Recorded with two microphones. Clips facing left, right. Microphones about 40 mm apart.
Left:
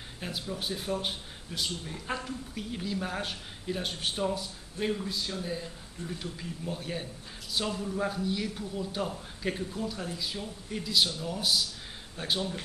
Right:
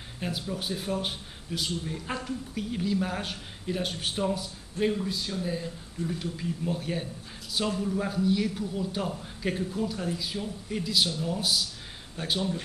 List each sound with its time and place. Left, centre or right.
0.2 s speech: centre